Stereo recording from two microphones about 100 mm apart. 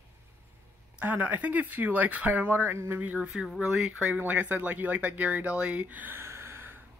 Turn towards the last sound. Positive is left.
turn(degrees=-20)  # may be behind; listen again after turning